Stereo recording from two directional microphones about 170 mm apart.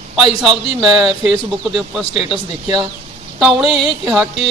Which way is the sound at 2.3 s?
30° right (ahead or behind).